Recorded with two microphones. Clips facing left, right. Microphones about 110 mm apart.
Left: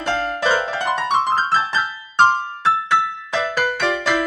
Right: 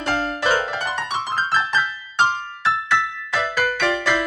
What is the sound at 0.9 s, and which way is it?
Music, 50° left (ahead or behind).